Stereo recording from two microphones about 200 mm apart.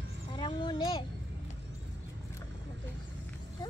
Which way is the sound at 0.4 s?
25° left (ahead or behind).